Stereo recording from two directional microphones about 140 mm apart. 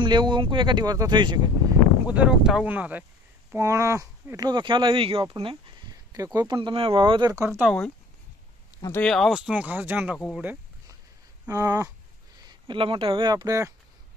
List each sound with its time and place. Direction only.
0.0 s speech: 35° right (ahead or behind)
2.0 s speech: 10° right (ahead or behind)
3.5 s speech: 20° right (ahead or behind)
7.3 s speech: 15° right (ahead or behind)
8.9 s speech: 5° left (ahead or behind); by 10.6 s 10° right (ahead or behind)
11.4 s speech: 25° right (ahead or behind)
12.4 s speech: 35° right (ahead or behind)